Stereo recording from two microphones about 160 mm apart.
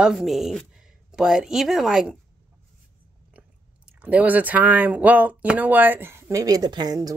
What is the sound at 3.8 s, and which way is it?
Speech, 10° right (ahead or behind).